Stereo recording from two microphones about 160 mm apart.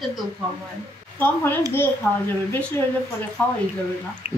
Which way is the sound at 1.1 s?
15° left (ahead or behind).